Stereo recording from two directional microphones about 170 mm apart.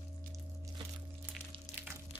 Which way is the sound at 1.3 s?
10° right (ahead or behind).